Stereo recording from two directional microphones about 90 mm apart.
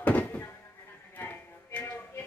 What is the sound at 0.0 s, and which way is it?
Music, 15° left (ahead or behind).